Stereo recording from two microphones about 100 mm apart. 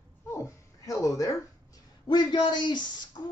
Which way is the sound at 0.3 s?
30° left (ahead or behind).